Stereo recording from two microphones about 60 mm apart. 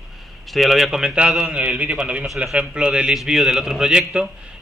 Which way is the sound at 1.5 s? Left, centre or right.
Right.